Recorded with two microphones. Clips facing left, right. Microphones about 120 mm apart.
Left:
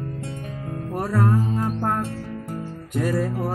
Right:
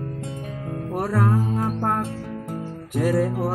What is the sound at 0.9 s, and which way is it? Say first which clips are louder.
Music: even; 5° right (ahead or behind).